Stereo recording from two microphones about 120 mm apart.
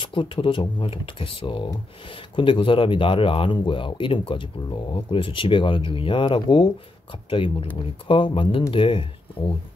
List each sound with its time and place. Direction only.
0.0 s speech: 45° left (ahead or behind)